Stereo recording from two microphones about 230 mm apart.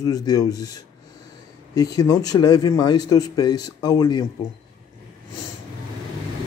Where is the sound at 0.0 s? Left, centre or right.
Centre.